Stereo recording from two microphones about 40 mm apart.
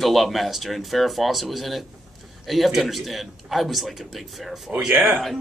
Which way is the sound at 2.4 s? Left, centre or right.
Centre.